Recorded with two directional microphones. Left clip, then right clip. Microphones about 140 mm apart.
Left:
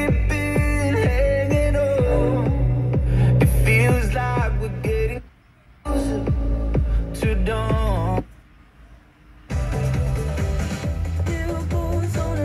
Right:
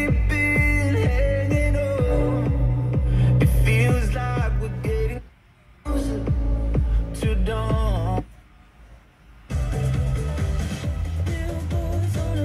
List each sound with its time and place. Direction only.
0.0 s music: 40° left (ahead or behind)
6.0 s music: 40° left (ahead or behind)
9.5 s music: 35° left (ahead or behind)